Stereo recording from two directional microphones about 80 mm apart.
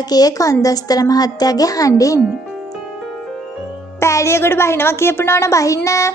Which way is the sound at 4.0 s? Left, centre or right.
Left.